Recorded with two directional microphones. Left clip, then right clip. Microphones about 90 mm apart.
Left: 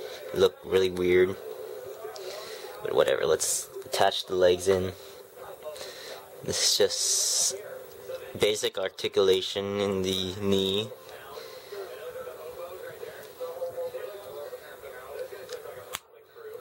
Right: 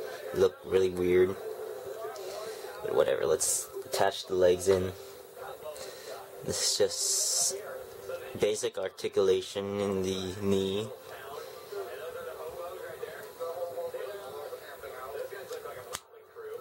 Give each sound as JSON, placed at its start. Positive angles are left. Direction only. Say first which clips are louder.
{"t": 0.4, "sound": "speech", "louder": "left 3 dB", "side_deg": 15}
{"t": 2.8, "sound": "speech", "louder": "left 3 dB", "side_deg": 15}
{"t": 6.4, "sound": "speech", "louder": "left 4 dB", "side_deg": 15}